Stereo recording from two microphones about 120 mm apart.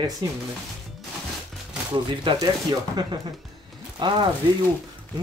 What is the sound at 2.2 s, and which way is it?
Speech, 35° right (ahead or behind).